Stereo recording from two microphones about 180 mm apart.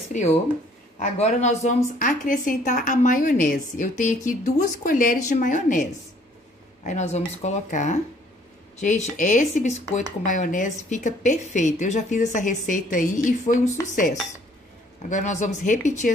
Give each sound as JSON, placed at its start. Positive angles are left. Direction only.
{"t": 0.1, "sound": "a woman's voice", "side_deg": 40}